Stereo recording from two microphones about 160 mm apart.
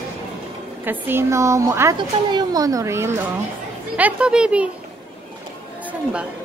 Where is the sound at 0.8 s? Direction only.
15° right (ahead or behind).